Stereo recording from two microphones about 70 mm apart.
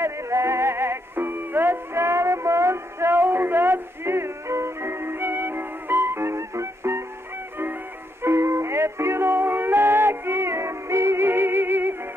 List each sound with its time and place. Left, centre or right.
0.0 s music: right
8.2 s music: right